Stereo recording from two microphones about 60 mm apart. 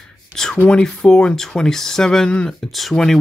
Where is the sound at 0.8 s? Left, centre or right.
Centre.